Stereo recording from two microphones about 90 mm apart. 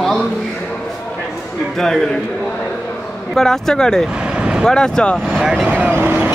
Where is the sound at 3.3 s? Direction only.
5° left (ahead or behind).